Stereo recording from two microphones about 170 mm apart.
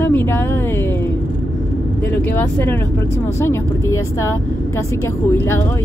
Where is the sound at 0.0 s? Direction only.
10° left (ahead or behind).